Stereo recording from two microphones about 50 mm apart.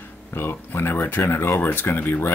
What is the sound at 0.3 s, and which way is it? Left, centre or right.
Speech, left.